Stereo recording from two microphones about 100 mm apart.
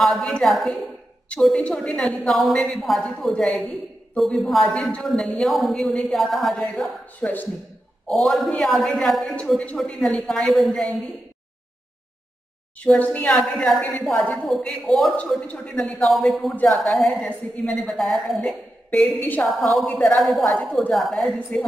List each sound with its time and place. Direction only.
0.0 s a woman's voice: 5° left (ahead or behind)
12.8 s speech: 10° left (ahead or behind)
13.3 s a woman's voice: 5° left (ahead or behind)
19.0 s a woman's voice: 20° left (ahead or behind)
19.7 s a woman's voice: centre (ahead or behind)
21.5 s speech: 15° left (ahead or behind)